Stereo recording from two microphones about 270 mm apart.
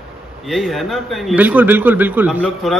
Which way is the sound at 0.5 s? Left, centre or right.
Centre.